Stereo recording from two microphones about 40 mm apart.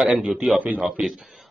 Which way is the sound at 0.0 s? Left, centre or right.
Centre.